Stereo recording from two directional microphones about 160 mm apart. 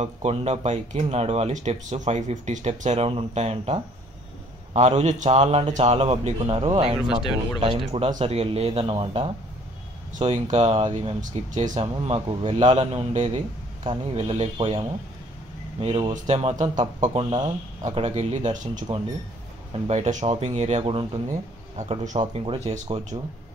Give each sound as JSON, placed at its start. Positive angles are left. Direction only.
{"t": 0.0, "sound": "speech", "side_deg": -40}
{"t": 10.3, "sound": "speech", "side_deg": -45}
{"t": 11.1, "sound": "speech", "side_deg": -50}
{"t": 11.8, "sound": "speech", "side_deg": -35}
{"t": 17.0, "sound": "speech", "side_deg": -30}
{"t": 17.8, "sound": "speech", "side_deg": -45}
{"t": 19.9, "sound": "speech", "side_deg": -45}
{"t": 22.2, "sound": "speech", "side_deg": -35}